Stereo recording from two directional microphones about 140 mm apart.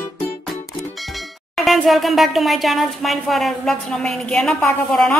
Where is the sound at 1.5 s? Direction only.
Centre (ahead or behind).